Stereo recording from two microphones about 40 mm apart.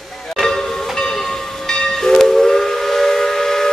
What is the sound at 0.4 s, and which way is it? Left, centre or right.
Train, centre.